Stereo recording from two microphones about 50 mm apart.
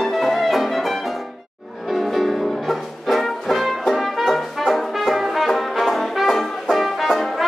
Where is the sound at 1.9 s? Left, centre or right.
Centre.